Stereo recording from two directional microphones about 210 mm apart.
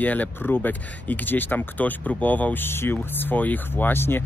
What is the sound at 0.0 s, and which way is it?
Speech, 10° left (ahead or behind).